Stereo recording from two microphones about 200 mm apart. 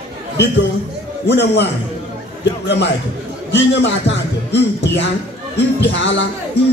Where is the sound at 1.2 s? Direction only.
60° left (ahead or behind).